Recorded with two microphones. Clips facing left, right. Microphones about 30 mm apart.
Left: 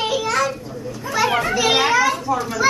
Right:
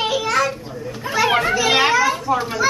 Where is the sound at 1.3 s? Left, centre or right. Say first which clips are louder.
Right 2 dB; right.